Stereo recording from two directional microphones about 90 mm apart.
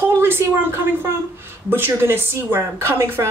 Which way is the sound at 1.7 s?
25° right (ahead or behind).